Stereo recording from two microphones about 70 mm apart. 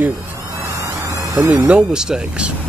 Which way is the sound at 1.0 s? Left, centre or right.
Right.